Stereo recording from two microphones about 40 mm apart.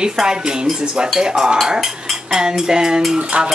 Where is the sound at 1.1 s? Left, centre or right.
Centre.